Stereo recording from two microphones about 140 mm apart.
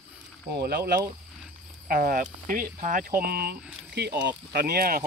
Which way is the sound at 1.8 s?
90° right.